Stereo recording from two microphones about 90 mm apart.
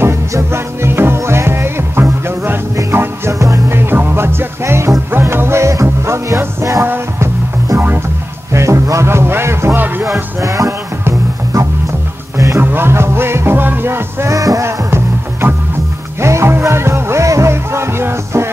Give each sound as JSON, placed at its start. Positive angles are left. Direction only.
{"t": 0.0, "sound": "music", "side_deg": -30}
{"t": 8.5, "sound": "a sound", "side_deg": -30}
{"t": 10.0, "sound": "music", "side_deg": -35}
{"t": 12.5, "sound": "music", "side_deg": -25}
{"t": 14.3, "sound": "music", "side_deg": -40}
{"t": 16.2, "sound": "music", "side_deg": -30}